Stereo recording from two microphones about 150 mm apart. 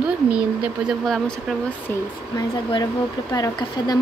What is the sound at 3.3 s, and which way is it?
Speech, 25° left (ahead or behind).